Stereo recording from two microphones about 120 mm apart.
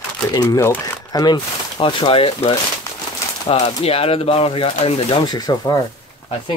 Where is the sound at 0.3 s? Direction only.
30° left (ahead or behind); by 5.2 s 50° left (ahead or behind).